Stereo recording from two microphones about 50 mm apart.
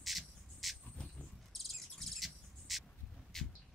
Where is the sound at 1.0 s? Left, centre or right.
Left.